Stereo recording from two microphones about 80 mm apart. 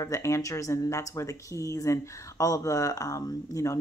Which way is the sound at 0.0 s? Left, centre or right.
Left.